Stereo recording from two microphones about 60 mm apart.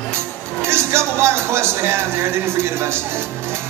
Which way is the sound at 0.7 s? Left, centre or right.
Right.